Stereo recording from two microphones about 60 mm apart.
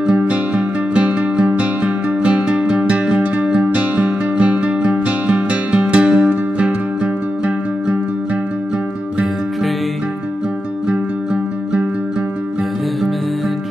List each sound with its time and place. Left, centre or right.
0.0 s music: centre